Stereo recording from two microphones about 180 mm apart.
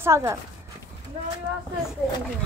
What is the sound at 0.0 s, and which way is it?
Speech, 15° right (ahead or behind).